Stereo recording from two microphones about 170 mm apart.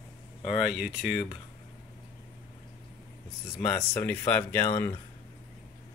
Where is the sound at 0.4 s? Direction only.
Centre (ahead or behind).